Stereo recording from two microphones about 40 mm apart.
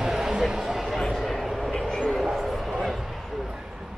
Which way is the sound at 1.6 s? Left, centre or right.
Centre.